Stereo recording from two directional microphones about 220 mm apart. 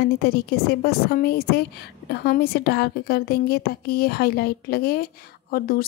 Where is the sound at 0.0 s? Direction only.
45° left (ahead or behind).